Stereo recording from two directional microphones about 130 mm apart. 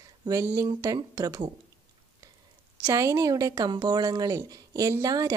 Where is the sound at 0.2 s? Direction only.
25° right (ahead or behind).